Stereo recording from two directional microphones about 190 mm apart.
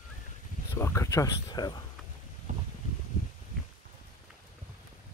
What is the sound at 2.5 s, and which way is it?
Boat, 40° right (ahead or behind).